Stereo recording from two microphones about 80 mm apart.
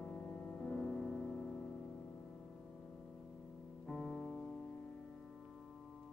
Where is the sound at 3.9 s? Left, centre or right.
Centre.